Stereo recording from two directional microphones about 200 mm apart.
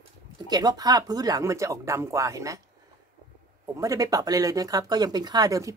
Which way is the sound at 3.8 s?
15° right (ahead or behind).